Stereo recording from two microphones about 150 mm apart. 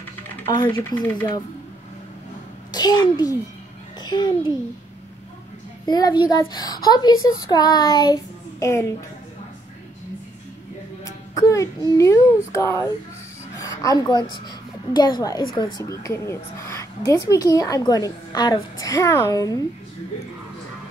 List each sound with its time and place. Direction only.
0.7 s speech: 10° left (ahead or behind)
2.7 s a child's voice: 25° left (ahead or behind)
5.9 s a woman's voice: 25° left (ahead or behind)
11.1 s a woman's voice: 20° left (ahead or behind)